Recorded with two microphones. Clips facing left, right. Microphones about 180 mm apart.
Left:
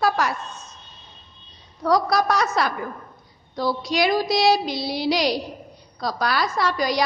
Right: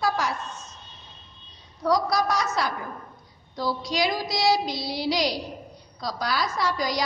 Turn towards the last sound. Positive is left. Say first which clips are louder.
# left 4 dB
turn(degrees=65)  # may be behind; listen again after turning